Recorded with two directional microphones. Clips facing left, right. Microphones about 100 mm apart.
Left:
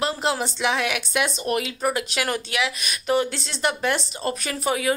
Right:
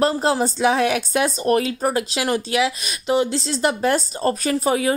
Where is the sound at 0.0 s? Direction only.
40° right (ahead or behind).